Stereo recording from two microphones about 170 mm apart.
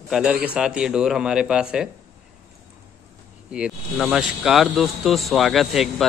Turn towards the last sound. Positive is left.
turn(degrees=0)  # may be behind; listen again after turning